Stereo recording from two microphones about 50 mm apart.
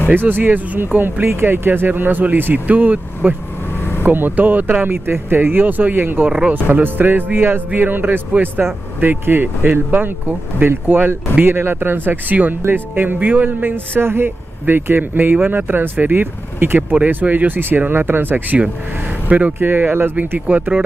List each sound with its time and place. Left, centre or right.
0.1 s speech: right
6.2 s speech: centre
6.5 s speech: right
15.3 s speech: right
17.1 s speech: right
20.3 s speech: right